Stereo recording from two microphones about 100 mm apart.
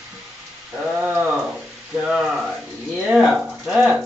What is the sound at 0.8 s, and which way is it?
Speech, 15° right (ahead or behind).